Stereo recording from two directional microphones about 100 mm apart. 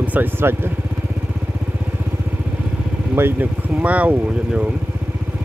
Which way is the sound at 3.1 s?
20° right (ahead or behind).